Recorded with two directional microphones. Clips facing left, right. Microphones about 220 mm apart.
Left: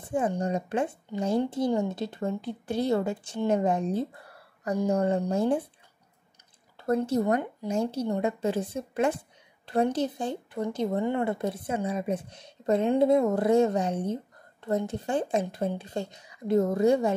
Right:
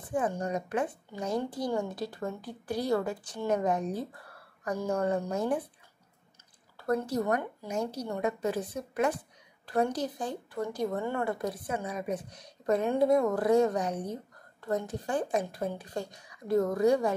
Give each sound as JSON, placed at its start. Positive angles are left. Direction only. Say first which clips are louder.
{"t": 0.0, "sound": "speech", "louder": "left 3 dB", "side_deg": 25}
{"t": 6.8, "sound": "speech", "louder": "left 4 dB", "side_deg": 25}